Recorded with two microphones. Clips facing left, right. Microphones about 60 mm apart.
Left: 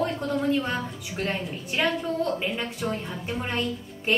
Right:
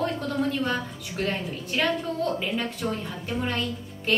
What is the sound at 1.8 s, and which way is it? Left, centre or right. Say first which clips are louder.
A woman's voice: left 1 dB; centre.